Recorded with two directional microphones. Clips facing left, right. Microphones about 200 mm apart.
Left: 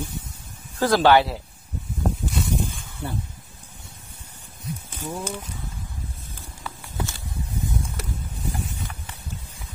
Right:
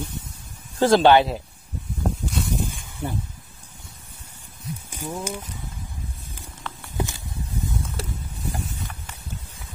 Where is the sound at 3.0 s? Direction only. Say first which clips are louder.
Right 2 dB; 10° right (ahead or behind).